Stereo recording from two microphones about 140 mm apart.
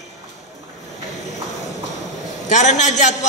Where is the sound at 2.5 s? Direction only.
60° left (ahead or behind).